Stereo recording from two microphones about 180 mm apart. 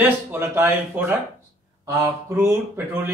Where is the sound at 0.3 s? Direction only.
10° right (ahead or behind).